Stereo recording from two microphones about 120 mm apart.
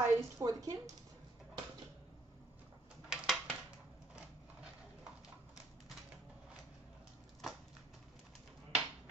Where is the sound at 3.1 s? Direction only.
5° right (ahead or behind).